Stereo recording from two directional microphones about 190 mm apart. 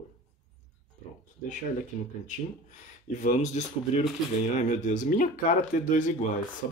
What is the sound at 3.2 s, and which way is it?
Speech, 40° left (ahead or behind).